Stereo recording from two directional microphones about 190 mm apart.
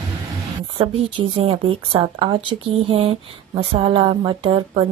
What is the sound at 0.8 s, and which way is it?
A woman's voice, 30° right (ahead or behind).